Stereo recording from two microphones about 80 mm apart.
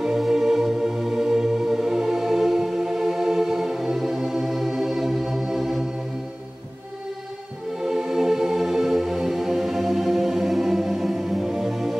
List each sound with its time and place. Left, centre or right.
0.0 s music: centre
7.8 s music: centre